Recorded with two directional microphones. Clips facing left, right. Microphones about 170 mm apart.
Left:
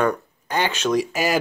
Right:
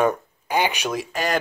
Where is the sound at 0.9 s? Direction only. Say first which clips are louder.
Left 4 dB; 5° left (ahead or behind).